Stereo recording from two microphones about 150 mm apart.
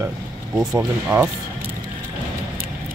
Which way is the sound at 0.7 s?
15° right (ahead or behind).